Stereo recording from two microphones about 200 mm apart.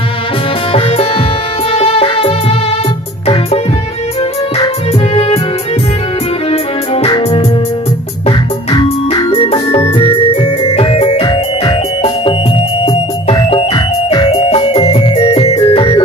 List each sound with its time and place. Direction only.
0.7 s music: 30° left (ahead or behind)
6.5 s music: 30° left (ahead or behind)